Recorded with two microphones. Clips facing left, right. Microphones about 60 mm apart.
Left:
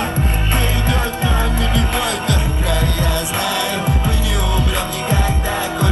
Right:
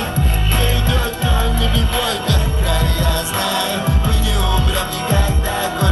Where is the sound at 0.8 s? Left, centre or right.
Left.